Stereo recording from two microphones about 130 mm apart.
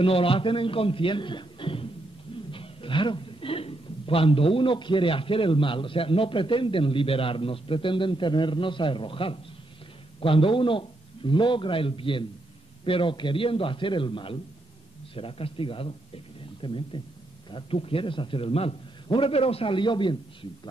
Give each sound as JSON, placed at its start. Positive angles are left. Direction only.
{"t": 0.0, "sound": "a man's voice", "side_deg": 45}